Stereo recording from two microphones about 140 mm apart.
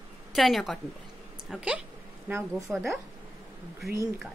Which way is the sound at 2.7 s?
Centre (ahead or behind).